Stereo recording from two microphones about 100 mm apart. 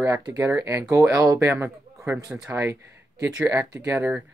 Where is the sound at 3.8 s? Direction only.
15° right (ahead or behind).